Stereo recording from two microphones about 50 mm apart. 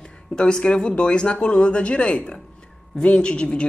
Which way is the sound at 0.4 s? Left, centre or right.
Centre.